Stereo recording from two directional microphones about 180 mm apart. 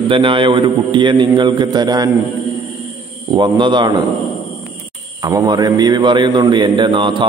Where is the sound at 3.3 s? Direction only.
25° right (ahead or behind).